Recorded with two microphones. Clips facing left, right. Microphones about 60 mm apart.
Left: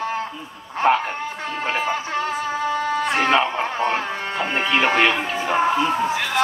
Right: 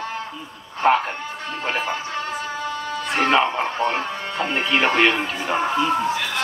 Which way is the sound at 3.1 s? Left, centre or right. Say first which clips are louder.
Right 2 dB; centre.